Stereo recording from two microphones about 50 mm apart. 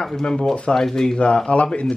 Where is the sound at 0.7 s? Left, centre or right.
Centre.